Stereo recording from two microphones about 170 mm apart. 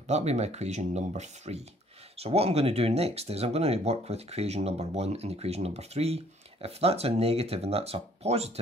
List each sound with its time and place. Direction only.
0.1 s speech: 40° right (ahead or behind)